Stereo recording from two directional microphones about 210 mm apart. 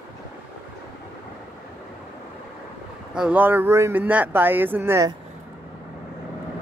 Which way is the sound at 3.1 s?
5° right (ahead or behind).